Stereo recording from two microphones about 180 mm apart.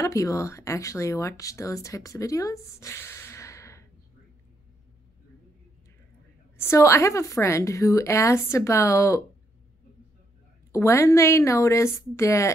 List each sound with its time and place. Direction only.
0.0 s speech: 15° left (ahead or behind)
6.6 s a woman's voice: 15° left (ahead or behind)
10.7 s a woman's voice: 15° left (ahead or behind)